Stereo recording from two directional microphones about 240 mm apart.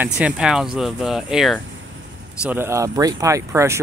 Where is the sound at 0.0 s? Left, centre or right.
Centre.